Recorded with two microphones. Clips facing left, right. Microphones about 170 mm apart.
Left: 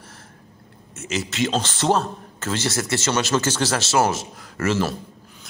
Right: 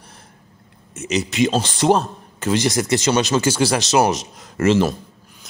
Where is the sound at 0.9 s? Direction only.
20° right (ahead or behind).